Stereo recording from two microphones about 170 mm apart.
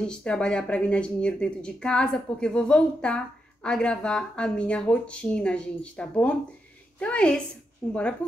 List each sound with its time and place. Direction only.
0.0 s speech: 5° left (ahead or behind)